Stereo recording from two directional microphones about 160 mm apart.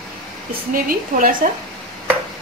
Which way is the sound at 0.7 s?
60° right (ahead or behind).